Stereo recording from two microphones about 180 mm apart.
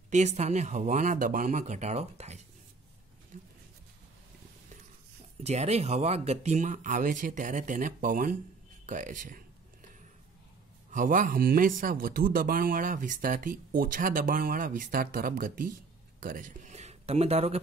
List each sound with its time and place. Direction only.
0.1 s speech: 40° right (ahead or behind)
3.3 s a sound: 45° right (ahead or behind)
5.4 s speech: 35° right (ahead or behind)
10.9 s speech: 45° right (ahead or behind)